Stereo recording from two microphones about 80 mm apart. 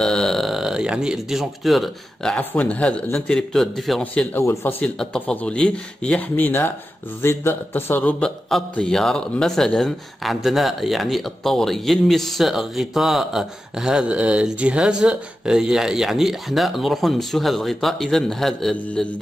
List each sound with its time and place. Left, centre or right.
0.0 s speech: centre
2.3 s speech: centre
4.0 s speech: centre
4.4 s speech: left
4.8 s speech: centre; by 8.2 s left
8.2 s a man's voice: centre